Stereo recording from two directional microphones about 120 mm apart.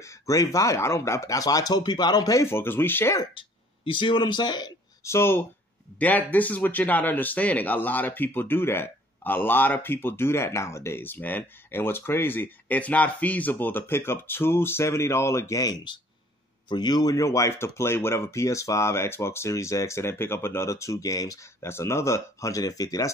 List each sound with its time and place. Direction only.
0.0 s speech: 25° left (ahead or behind)
3.3 s speech: 45° left (ahead or behind)
5.0 s speech: 20° left (ahead or behind)